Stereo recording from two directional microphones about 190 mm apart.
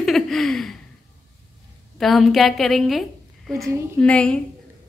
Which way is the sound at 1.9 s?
Centre (ahead or behind).